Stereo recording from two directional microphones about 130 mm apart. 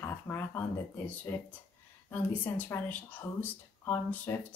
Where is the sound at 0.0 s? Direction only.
20° left (ahead or behind).